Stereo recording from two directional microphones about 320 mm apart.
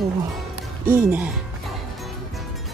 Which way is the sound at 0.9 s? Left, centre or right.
Centre.